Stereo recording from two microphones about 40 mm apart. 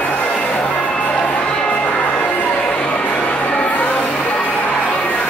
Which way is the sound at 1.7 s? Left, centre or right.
Left.